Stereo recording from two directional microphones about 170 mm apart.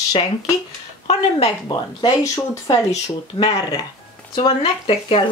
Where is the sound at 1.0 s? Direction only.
30° left (ahead or behind).